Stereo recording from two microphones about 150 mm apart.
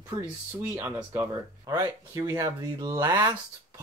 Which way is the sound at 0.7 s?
15° right (ahead or behind).